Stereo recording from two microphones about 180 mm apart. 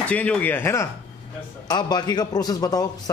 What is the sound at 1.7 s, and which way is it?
A man's voice, 25° left (ahead or behind).